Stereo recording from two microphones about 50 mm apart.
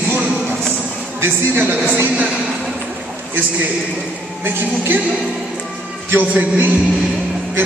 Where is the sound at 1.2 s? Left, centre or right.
Right.